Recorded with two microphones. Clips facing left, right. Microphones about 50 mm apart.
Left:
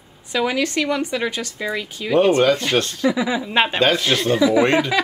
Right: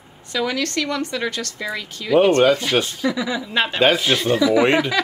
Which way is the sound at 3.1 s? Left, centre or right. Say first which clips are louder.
Left 3 dB; centre.